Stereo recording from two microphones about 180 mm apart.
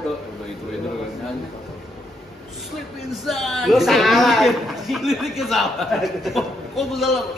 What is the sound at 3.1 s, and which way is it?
A man's voice, centre (ahead or behind).